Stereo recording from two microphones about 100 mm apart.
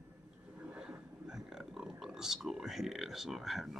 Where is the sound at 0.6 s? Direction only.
10° right (ahead or behind).